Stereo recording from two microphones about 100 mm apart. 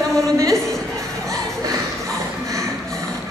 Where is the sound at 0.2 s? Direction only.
30° right (ahead or behind).